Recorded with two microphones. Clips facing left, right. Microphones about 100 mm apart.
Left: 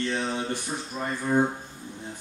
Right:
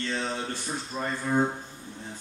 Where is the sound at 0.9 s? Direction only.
Centre (ahead or behind).